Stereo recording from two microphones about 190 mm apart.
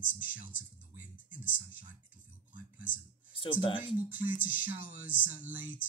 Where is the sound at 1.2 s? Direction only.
45° left (ahead or behind).